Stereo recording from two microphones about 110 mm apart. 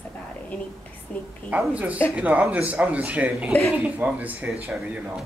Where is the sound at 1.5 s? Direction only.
10° right (ahead or behind).